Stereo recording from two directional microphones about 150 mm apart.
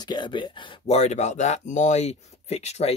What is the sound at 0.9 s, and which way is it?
Speech, 50° left (ahead or behind).